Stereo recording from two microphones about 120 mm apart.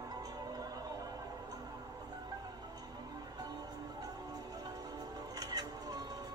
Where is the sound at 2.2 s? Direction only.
30° right (ahead or behind).